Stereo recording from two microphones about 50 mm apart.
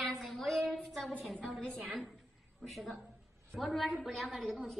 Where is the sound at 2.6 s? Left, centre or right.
Centre.